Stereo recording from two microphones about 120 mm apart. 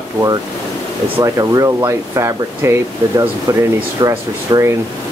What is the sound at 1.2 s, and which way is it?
Speech, 30° right (ahead or behind).